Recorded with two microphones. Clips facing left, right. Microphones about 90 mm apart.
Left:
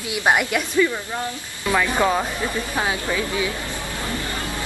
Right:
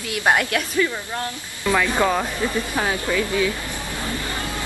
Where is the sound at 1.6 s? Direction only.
10° left (ahead or behind).